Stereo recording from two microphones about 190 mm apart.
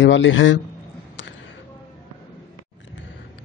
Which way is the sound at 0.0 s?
75° left (ahead or behind).